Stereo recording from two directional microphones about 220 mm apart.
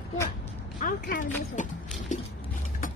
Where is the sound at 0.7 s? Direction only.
40° left (ahead or behind).